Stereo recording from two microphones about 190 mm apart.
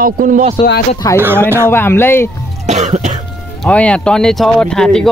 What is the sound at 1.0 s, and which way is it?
Speech, 20° left (ahead or behind).